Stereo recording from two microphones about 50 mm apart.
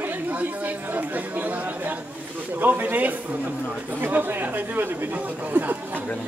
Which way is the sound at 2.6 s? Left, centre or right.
Right.